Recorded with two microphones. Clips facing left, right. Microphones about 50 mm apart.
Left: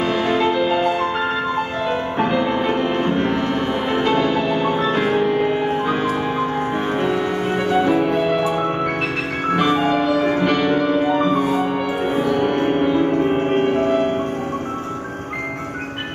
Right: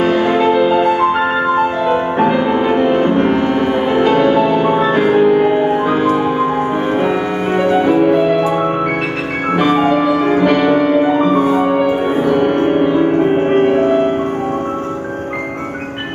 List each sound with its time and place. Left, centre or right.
0.0 s music: centre
9.6 s music: centre